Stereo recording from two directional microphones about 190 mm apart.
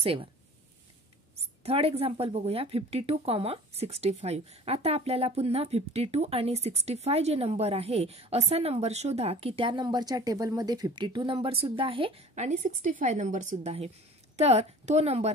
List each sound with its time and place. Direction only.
0.0 s speech: 30° right (ahead or behind)
1.6 s speech: 30° right (ahead or behind)